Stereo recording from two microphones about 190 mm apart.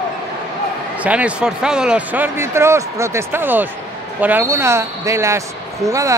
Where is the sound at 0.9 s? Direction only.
5° right (ahead or behind).